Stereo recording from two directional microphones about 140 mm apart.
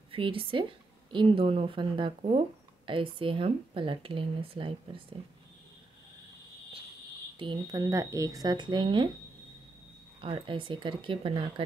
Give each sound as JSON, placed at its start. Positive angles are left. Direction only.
{"t": 0.1, "sound": "speech", "side_deg": -40}
{"t": 7.3, "sound": "speech", "side_deg": -30}
{"t": 10.2, "sound": "speech", "side_deg": -35}